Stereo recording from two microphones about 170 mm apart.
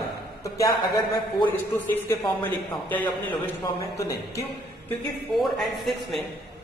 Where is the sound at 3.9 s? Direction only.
20° left (ahead or behind).